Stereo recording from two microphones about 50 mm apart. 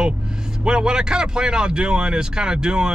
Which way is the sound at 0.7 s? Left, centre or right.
Centre.